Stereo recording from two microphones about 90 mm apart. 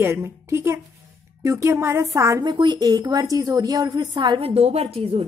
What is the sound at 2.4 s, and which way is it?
A woman's voice, 60° right (ahead or behind).